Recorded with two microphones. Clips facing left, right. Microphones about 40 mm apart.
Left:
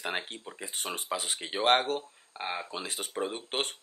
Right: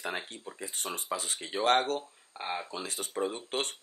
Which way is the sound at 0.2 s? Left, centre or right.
Left.